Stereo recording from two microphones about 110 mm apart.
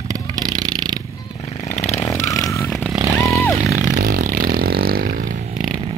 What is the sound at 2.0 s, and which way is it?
Vehicle, 30° left (ahead or behind).